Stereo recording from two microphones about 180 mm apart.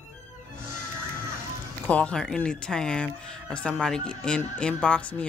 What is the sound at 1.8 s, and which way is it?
Speech, 5° left (ahead or behind).